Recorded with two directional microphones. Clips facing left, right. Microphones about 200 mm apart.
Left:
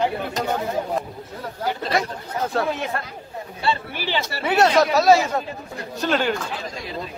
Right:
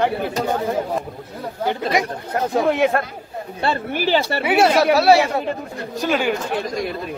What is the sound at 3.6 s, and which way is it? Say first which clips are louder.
Speech: right 4 dB; 50° right (ahead or behind).